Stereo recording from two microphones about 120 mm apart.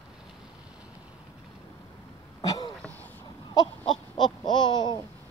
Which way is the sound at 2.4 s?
30° left (ahead or behind).